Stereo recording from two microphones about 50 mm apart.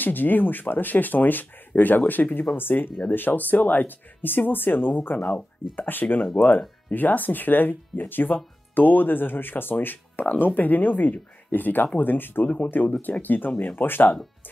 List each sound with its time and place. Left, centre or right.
0.0 s speech: left